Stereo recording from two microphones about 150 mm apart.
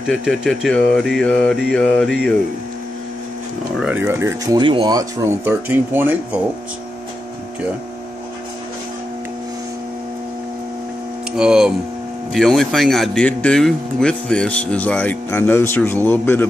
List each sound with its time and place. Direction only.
0.1 s mantra: centre (ahead or behind)
3.7 s speech: 10° right (ahead or behind)
4.6 s speech: 35° right (ahead or behind)
5.4 s speech: 15° right (ahead or behind)
11.3 s mantra: 5° right (ahead or behind)
12.3 s speech: centre (ahead or behind)